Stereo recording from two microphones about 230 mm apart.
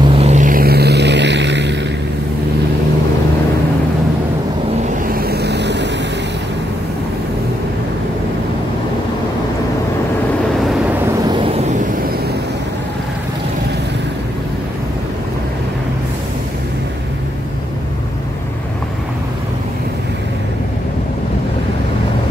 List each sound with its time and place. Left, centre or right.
0.1 s vehicle: right
5.1 s vehicle: right
11.2 s vehicle: right